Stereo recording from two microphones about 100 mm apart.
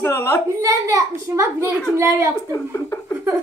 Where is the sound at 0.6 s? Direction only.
35° right (ahead or behind).